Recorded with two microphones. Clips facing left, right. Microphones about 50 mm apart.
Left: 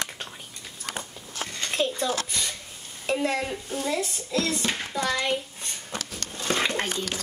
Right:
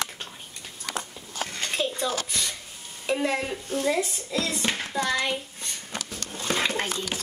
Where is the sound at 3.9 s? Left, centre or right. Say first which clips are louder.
Right 2 dB; centre.